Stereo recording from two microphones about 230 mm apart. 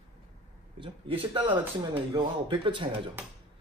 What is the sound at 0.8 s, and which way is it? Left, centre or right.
Speech, right.